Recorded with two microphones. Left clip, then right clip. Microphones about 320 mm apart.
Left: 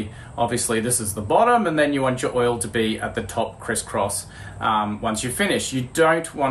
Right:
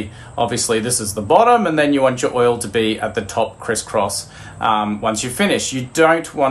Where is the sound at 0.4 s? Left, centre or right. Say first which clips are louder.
Right 4 dB; right.